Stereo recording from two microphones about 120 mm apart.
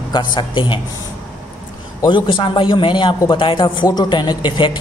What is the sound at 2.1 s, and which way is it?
A man's voice, 45° left (ahead or behind).